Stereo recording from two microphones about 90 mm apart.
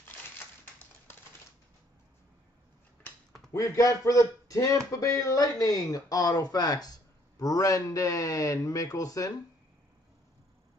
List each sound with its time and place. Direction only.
3.5 s speech: 40° left (ahead or behind)